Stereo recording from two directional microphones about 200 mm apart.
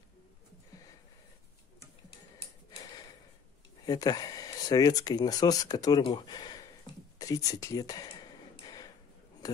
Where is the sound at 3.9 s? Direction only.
20° left (ahead or behind).